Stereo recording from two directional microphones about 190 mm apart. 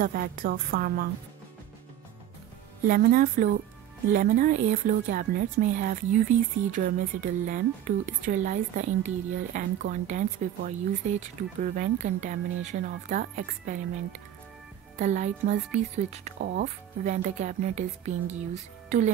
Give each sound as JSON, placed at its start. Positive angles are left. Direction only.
{"t": 0.0, "sound": "a woman's voice", "side_deg": -50}
{"t": 2.9, "sound": "a woman's voice", "side_deg": -45}
{"t": 16.3, "sound": "speech", "side_deg": -60}
{"t": 16.6, "sound": "speech", "side_deg": -40}